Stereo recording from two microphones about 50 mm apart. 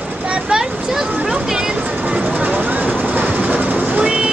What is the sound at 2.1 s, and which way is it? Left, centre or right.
Train, right.